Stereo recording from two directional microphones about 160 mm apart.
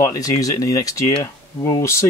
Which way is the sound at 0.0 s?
20° left (ahead or behind).